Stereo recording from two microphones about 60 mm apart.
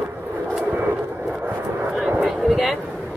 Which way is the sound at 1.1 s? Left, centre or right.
Centre.